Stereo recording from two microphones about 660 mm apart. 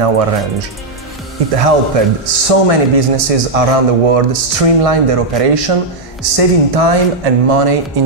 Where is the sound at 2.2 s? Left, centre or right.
Right.